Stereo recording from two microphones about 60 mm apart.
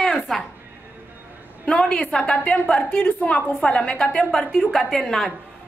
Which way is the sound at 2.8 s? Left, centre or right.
Left.